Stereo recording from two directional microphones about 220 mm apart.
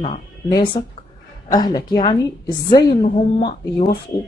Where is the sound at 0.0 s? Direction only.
20° left (ahead or behind).